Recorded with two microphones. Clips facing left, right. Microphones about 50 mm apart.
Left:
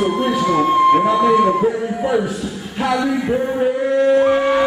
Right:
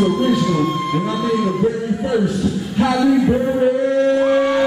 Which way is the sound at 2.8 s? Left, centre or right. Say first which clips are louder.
Right 3 dB; centre.